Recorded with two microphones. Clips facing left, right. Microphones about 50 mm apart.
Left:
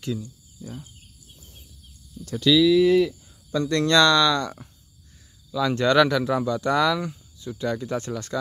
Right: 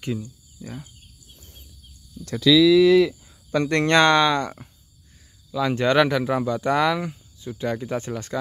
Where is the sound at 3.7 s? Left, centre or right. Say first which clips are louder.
Right 1 dB; right.